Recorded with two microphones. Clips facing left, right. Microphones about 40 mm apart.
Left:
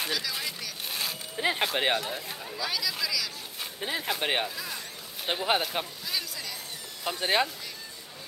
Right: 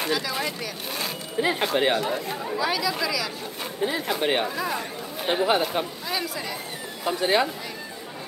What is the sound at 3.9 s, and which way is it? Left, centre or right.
Speech, centre.